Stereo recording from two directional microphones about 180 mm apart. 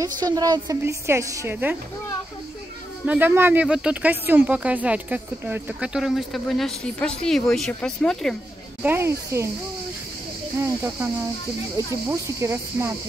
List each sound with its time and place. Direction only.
0.0 s a woman's voice: 20° right (ahead or behind)
3.1 s speech: 10° right (ahead or behind)
8.8 s a woman's voice: 15° right (ahead or behind)
10.6 s a woman's voice: 15° right (ahead or behind)